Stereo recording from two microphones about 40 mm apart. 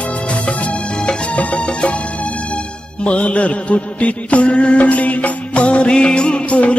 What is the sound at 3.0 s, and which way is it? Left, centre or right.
Mantra, left.